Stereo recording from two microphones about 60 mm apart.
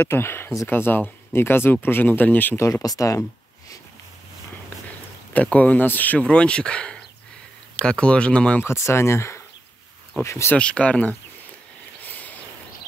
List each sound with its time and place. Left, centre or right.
0.0 s speech: left
2.7 s speech: left
5.3 s speech: left
6.1 s speech: centre
8.6 s speech: left
10.5 s speech: centre
12.0 s a sound: left